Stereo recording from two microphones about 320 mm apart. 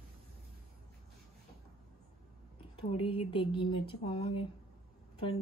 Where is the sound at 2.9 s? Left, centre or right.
Centre.